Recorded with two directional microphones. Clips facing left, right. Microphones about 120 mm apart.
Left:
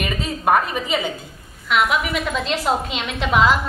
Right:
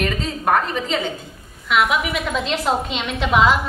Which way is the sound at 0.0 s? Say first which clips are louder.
Right 1 dB; 5° left (ahead or behind).